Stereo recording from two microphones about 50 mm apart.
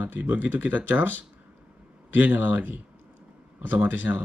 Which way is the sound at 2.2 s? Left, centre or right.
Right.